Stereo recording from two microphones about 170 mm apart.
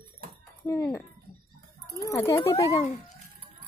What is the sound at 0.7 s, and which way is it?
Speech, 15° left (ahead or behind).